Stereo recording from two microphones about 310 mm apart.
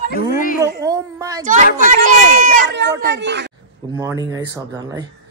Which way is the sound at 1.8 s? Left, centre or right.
Right.